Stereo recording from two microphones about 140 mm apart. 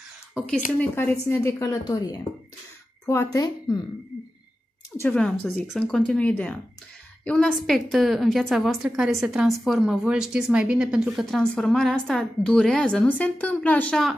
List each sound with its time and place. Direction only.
0.7 s a woman's voice: 15° left (ahead or behind)
3.3 s a woman's voice: 25° left (ahead or behind)
4.9 s speech: 10° left (ahead or behind)